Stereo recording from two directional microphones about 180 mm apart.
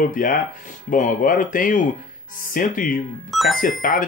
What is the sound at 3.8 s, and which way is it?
Speech, 50° left (ahead or behind).